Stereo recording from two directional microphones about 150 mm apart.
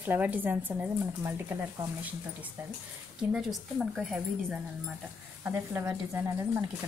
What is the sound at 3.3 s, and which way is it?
Speech, centre (ahead or behind).